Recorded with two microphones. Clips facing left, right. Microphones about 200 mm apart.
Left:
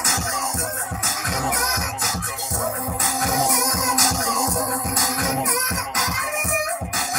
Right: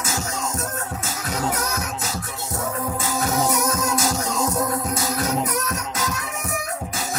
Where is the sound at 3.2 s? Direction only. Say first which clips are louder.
Right 1 dB; 15° left (ahead or behind).